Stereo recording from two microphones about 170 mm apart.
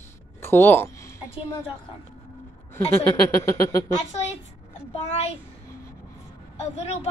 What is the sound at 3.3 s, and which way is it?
Speech, 15° left (ahead or behind).